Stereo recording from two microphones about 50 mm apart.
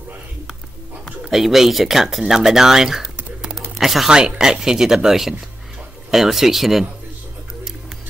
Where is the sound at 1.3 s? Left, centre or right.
Centre.